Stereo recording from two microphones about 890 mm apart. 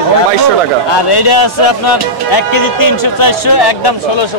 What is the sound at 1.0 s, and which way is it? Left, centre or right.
Speech, left.